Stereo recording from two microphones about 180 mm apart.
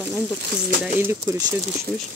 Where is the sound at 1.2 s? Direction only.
20° right (ahead or behind).